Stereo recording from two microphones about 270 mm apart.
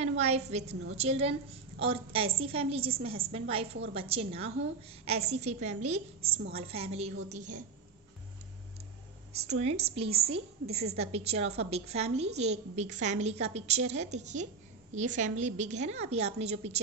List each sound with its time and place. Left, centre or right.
0.2 s a woman's voice: right
9.4 s a woman's voice: right